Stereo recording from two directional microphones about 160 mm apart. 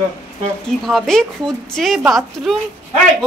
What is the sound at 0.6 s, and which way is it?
A woman's voice, centre (ahead or behind).